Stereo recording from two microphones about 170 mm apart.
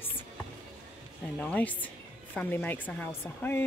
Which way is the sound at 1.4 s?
10° left (ahead or behind).